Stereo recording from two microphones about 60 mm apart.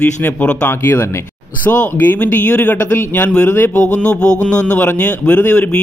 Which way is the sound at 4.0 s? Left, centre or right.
Centre.